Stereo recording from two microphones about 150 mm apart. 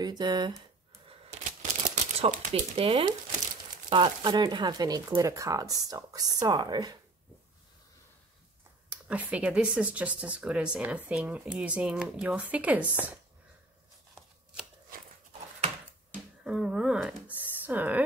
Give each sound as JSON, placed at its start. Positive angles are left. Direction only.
{"t": 0.0, "sound": "speech", "side_deg": -30}
{"t": 1.0, "sound": "a sound", "side_deg": -50}
{"t": 3.9, "sound": "speech", "side_deg": -30}
{"t": 9.0, "sound": "speech", "side_deg": -10}
{"t": 16.4, "sound": "speech", "side_deg": -5}
{"t": 17.4, "sound": "a sound", "side_deg": -10}